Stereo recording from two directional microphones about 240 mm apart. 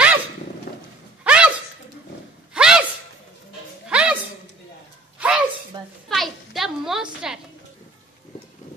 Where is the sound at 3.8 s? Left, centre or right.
Centre.